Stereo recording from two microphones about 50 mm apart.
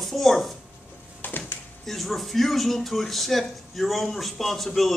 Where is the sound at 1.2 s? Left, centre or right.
Left.